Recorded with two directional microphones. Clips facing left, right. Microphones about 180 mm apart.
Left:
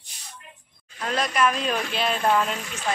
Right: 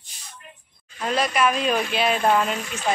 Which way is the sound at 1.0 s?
5° right (ahead or behind).